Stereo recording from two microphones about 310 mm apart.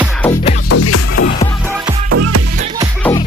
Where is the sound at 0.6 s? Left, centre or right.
Left.